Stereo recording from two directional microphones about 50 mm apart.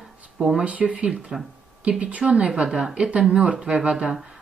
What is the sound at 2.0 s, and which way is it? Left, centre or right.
Speech, right.